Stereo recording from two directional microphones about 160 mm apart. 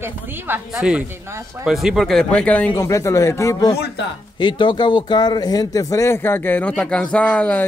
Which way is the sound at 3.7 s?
85° left.